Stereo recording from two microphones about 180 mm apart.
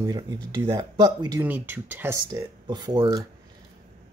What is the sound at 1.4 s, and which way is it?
Speech, 10° right (ahead or behind).